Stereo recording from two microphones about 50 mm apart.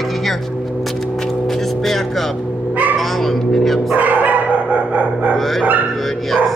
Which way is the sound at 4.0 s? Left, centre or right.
Right.